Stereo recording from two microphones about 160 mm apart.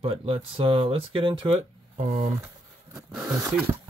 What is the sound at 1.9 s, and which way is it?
Speech, 50° right (ahead or behind).